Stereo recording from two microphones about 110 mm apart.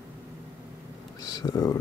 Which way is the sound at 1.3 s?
35° left (ahead or behind).